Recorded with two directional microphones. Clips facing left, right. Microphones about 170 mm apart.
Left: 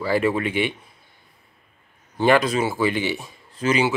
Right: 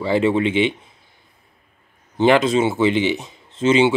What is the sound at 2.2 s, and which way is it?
Speech, 20° right (ahead or behind).